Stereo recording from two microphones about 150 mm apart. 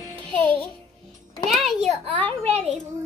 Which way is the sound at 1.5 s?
Centre (ahead or behind).